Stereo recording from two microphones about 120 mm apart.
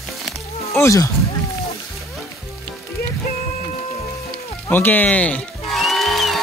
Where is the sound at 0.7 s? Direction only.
25° left (ahead or behind).